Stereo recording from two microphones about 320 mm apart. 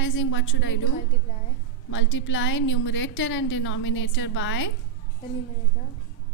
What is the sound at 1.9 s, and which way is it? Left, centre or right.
A woman's voice, left.